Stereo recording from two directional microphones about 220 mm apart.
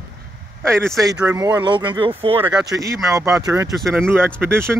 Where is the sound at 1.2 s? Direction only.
15° right (ahead or behind).